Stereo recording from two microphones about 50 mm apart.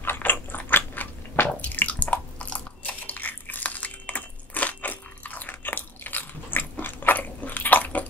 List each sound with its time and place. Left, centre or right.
0.0 s biting: left